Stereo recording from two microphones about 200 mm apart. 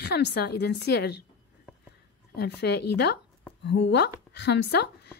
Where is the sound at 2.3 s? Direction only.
55° left (ahead or behind).